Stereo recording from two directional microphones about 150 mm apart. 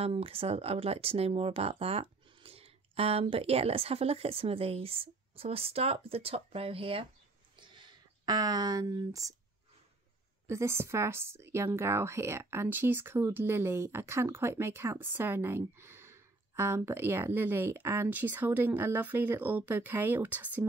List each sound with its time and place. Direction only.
0.0 s speech: 40° right (ahead or behind)
7.5 s a sound: 30° right (ahead or behind)
10.4 s speech: 20° right (ahead or behind)